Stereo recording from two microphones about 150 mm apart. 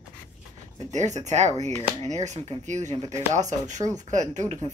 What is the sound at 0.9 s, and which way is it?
Speech, 50° right (ahead or behind).